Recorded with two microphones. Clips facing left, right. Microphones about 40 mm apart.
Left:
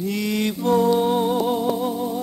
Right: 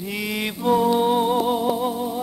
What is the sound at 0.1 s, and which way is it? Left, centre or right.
Music, centre.